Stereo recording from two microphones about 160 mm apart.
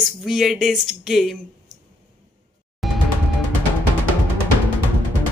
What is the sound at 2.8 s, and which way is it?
Music, centre (ahead or behind).